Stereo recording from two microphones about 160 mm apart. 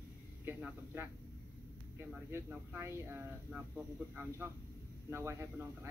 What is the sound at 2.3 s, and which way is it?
Speech, 15° right (ahead or behind).